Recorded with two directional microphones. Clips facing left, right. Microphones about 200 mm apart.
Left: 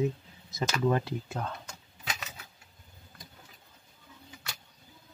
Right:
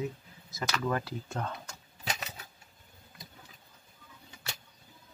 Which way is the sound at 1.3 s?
Centre (ahead or behind).